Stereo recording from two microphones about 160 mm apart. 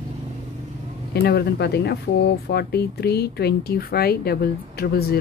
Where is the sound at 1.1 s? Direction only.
85° left.